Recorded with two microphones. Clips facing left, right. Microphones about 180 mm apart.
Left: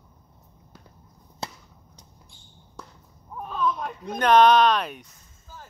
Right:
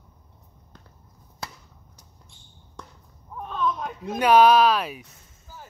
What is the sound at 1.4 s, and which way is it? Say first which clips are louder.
Chop: left 3 dB; 20° left (ahead or behind).